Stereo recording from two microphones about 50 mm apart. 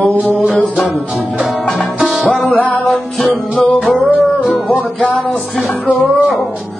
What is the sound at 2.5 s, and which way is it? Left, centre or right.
Music, left.